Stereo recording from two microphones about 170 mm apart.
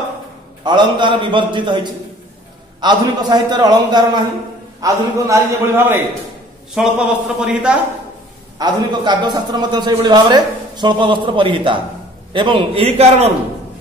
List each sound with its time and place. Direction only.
0.7 s a man's voice: 25° right (ahead or behind)
6.7 s a man's voice: 5° right (ahead or behind)
8.5 s a man's voice: 25° right (ahead or behind)